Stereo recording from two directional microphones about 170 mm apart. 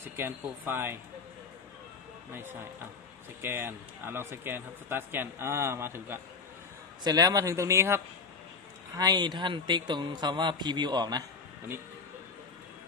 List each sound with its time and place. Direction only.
0.0 s speech: 15° right (ahead or behind)
2.3 s a man's voice: 10° right (ahead or behind)